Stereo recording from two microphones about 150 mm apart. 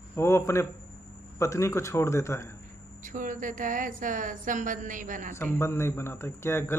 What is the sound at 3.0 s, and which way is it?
A woman's voice, 60° right (ahead or behind).